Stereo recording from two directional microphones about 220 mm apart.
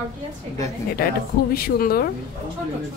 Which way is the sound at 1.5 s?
45° left (ahead or behind).